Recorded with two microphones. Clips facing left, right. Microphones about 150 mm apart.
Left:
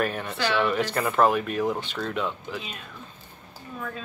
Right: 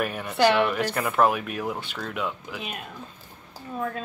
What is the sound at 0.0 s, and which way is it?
Speech, 10° right (ahead or behind).